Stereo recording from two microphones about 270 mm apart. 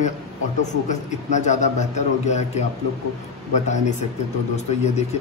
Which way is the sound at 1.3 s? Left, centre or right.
Left.